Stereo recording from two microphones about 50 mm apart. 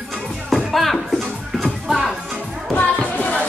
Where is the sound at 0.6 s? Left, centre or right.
Centre.